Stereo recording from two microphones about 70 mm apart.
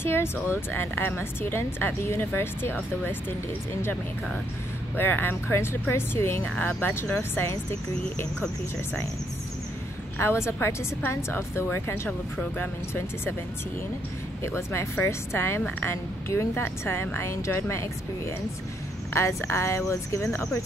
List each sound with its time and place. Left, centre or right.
0.0 s speech: left
4.9 s speech: left
6.4 s speech: centre
6.8 s speech: left
10.1 s speech: left
14.4 s speech: left